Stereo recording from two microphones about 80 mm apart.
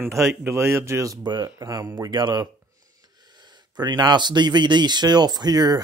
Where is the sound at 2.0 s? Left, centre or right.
Right.